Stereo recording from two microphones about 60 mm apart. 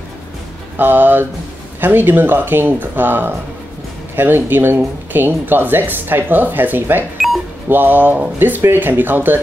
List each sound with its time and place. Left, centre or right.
0.7 s speech: right